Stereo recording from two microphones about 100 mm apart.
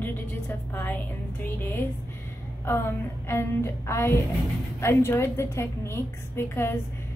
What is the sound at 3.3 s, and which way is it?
A woman's voice, 25° left (ahead or behind).